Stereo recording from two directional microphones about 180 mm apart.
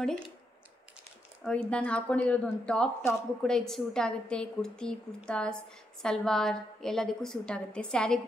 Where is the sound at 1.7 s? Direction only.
5° left (ahead or behind).